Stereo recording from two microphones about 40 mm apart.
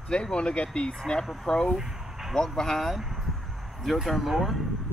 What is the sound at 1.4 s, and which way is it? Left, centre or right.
Speech, centre.